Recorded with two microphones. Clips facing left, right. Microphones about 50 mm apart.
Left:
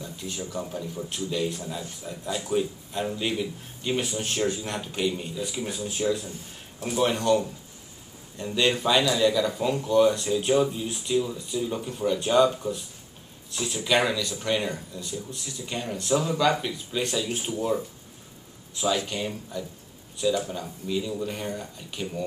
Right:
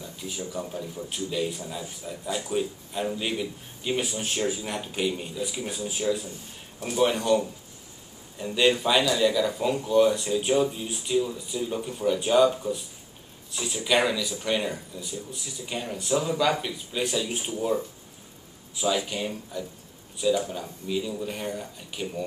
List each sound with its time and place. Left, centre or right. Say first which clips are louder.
0.0 s speech: even; centre